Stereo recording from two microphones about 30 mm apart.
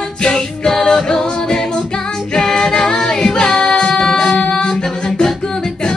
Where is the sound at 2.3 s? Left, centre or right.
Centre.